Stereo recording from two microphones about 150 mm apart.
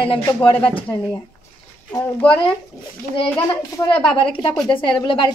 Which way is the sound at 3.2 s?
25° left (ahead or behind).